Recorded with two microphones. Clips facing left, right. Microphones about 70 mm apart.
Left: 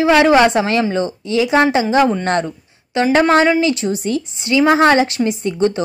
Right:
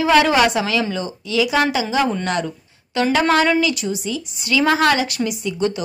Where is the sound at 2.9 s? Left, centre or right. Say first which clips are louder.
Left 4 dB; left.